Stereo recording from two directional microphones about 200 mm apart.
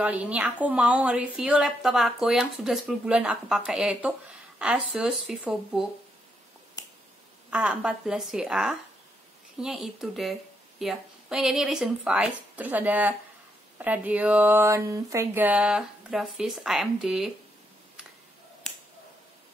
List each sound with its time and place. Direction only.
0.0 s a woman's voice: 5° right (ahead or behind)
7.5 s a woman's voice: 5° right (ahead or behind)